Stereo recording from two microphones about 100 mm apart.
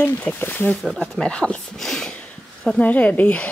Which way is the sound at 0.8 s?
5° left (ahead or behind).